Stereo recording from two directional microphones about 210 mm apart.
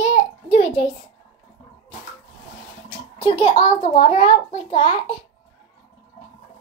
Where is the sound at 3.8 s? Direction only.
25° left (ahead or behind).